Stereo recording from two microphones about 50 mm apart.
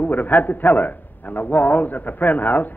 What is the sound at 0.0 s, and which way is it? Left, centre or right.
A man's voice, left.